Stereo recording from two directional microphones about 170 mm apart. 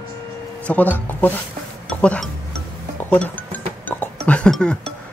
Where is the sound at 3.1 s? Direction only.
10° left (ahead or behind).